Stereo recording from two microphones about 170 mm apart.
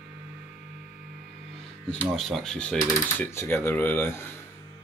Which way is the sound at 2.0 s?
Centre (ahead or behind).